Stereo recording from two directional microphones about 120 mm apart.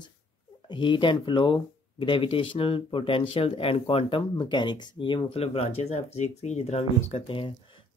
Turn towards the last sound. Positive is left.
turn(degrees=55)  # may be behind; listen again after turning